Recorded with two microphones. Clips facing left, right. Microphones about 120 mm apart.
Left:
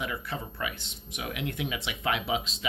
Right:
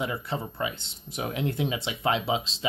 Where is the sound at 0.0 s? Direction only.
30° right (ahead or behind).